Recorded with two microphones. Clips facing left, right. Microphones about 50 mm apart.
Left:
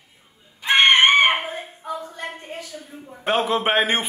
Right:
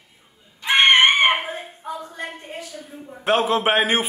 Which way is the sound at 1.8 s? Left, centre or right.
Right.